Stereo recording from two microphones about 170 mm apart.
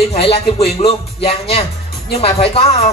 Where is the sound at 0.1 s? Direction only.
35° left (ahead or behind).